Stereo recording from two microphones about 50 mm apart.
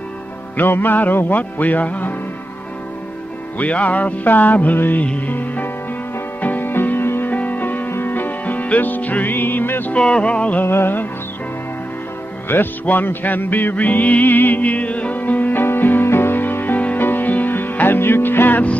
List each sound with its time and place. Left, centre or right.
0.6 s music: left
3.5 s music: left
7.2 s music: left
9.9 s music: left
10.6 s music: left
12.4 s music: left
15.6 s music: left